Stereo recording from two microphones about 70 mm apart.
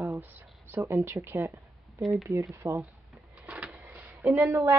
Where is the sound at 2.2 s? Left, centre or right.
Right.